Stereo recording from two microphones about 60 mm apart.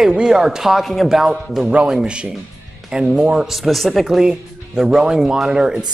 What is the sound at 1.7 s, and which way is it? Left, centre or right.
Speech, centre.